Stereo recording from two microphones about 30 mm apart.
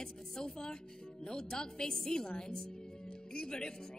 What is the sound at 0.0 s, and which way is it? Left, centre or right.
Speech, left.